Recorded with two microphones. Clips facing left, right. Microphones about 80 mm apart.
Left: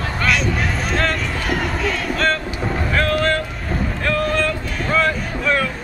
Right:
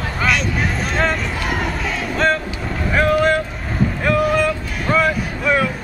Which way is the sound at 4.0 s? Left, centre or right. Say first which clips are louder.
Right 3 dB; centre.